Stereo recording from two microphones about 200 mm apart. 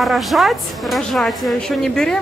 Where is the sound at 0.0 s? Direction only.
Centre (ahead or behind).